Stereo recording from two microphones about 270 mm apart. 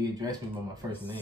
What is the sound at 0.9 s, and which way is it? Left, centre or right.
Speech, centre.